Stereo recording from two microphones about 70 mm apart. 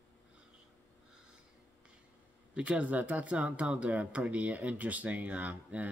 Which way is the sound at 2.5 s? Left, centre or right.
Centre.